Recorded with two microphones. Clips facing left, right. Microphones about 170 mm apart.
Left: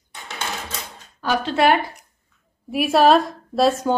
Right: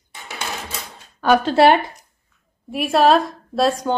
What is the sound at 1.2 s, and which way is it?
Speech, 55° right (ahead or behind).